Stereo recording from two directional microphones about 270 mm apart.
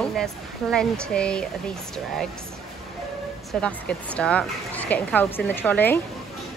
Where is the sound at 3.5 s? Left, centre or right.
Centre.